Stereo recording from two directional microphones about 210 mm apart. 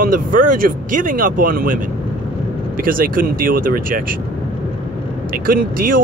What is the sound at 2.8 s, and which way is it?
Speech, 40° right (ahead or behind).